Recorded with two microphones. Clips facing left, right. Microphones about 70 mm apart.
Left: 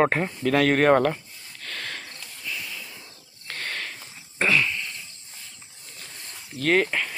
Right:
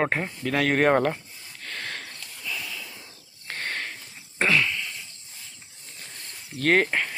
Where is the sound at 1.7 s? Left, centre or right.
Right.